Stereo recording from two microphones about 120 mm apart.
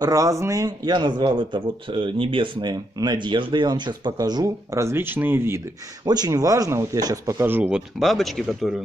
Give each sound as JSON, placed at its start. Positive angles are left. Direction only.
{"t": 0.0, "sound": "a man's voice", "side_deg": -25}
{"t": 6.0, "sound": "speech", "side_deg": -35}
{"t": 8.0, "sound": "speech", "side_deg": 0}